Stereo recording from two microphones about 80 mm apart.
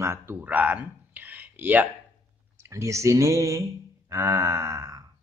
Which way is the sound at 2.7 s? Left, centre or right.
Right.